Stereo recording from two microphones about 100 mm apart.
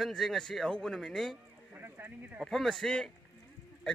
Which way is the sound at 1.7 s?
20° right (ahead or behind).